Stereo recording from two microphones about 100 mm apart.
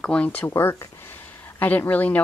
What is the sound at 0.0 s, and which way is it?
Speech, 10° left (ahead or behind).